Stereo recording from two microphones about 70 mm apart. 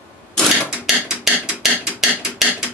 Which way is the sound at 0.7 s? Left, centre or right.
Centre.